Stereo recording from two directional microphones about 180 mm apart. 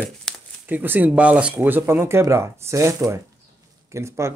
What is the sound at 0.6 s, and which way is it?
Speech, 10° right (ahead or behind).